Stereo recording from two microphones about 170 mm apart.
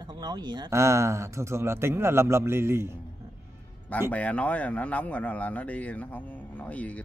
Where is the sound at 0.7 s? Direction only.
15° right (ahead or behind).